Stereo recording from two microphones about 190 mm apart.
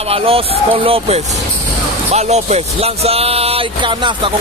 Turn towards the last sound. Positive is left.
turn(degrees=-30)  # may be behind; listen again after turning